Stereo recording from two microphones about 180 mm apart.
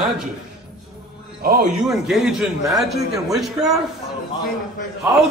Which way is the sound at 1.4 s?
55° right (ahead or behind).